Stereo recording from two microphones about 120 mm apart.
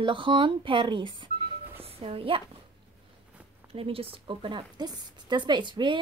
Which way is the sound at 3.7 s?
50° right (ahead or behind).